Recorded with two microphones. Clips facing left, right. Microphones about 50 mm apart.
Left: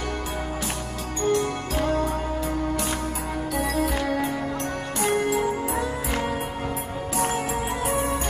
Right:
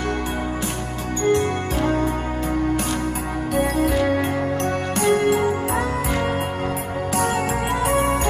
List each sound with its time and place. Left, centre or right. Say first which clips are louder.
3.8 s music: right 5 dB; right
7.8 s music: right 6 dB; right